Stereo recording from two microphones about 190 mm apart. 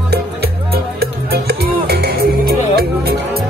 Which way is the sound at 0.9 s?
55° right (ahead or behind).